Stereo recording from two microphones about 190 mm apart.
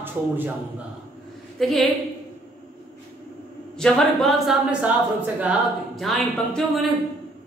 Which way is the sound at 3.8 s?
Centre (ahead or behind).